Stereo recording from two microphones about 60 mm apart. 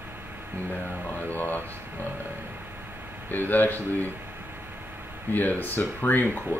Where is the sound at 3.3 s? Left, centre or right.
Left.